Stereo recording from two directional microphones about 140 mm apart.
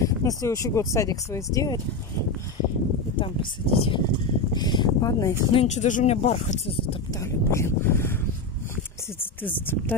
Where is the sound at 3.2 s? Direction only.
40° left (ahead or behind).